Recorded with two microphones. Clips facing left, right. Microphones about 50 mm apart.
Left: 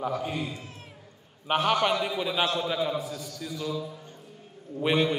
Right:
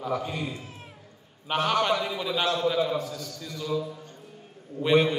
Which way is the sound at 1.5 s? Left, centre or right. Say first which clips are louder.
Even; centre.